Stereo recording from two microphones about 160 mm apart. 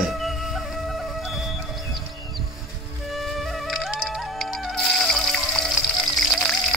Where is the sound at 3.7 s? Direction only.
5° right (ahead or behind).